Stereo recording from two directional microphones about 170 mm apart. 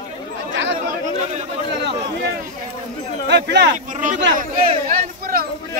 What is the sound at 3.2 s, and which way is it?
Speech, 90° right.